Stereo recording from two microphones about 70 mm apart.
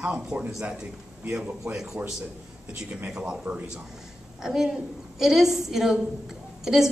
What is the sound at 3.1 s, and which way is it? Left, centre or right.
A woman's voice, centre.